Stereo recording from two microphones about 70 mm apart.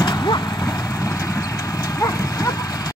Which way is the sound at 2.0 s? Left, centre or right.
Left.